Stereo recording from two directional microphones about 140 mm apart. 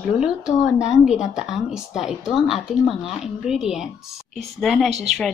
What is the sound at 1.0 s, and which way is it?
A woman's voice, 5° right (ahead or behind).